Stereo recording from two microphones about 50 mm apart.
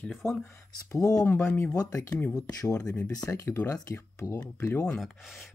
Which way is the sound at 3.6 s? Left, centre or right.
Left.